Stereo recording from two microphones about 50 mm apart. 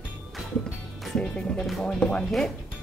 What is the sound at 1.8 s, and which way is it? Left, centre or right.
Speech, centre.